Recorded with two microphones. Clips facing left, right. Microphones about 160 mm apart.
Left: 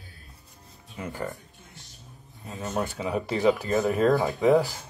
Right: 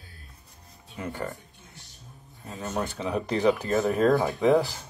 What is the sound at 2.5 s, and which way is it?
Speech, 5° left (ahead or behind).